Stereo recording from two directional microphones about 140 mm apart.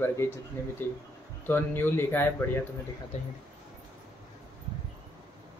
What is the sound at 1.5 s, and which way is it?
Speech, 15° left (ahead or behind).